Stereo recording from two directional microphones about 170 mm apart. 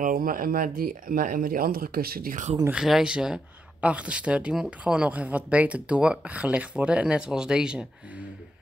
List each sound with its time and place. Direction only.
0.0 s speech: 55° right (ahead or behind)
2.7 s speech: 5° right (ahead or behind)